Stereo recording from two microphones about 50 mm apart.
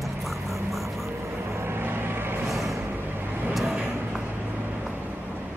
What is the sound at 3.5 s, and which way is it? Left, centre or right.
Speech, centre.